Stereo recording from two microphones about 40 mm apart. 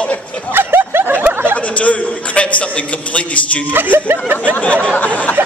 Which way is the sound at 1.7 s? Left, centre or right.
Left.